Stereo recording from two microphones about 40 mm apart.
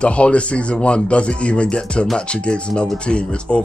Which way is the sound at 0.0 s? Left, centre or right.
Left.